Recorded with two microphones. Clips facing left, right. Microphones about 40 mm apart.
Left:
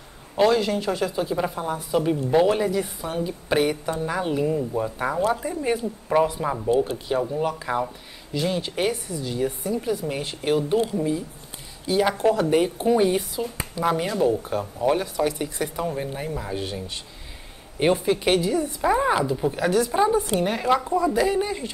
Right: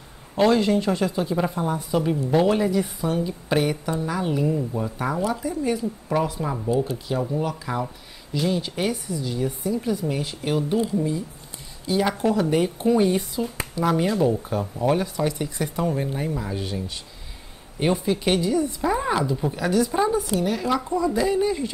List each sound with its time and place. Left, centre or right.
0.5 s speech: centre
0.7 s a woman's voice: centre
5.3 s speech: left
6.0 s a woman's voice: centre
17.7 s a woman's voice: centre
20.3 s speech: left
20.7 s speech: left